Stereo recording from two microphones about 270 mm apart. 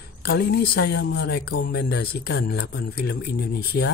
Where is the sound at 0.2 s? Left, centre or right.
Left.